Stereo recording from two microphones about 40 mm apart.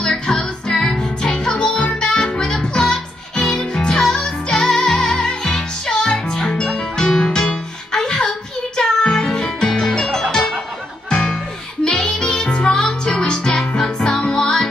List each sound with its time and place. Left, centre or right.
0.0 s music: centre
1.8 s music: left
2.0 s music: centre